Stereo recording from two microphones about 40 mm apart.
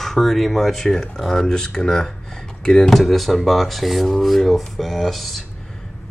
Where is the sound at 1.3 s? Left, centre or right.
Centre.